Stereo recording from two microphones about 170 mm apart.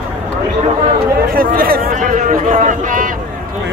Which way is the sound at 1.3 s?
60° right (ahead or behind).